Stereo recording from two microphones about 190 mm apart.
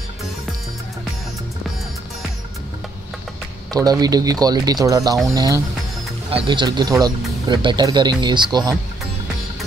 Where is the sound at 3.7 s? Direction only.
20° right (ahead or behind).